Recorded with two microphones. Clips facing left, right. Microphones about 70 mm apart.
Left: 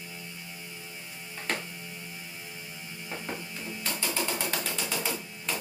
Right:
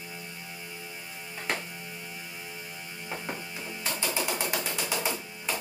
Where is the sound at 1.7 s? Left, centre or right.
Right.